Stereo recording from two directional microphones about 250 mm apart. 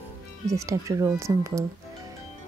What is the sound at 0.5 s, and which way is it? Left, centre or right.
Speech, centre.